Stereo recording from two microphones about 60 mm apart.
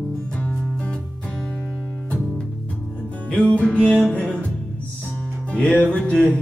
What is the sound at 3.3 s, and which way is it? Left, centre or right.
Music, centre.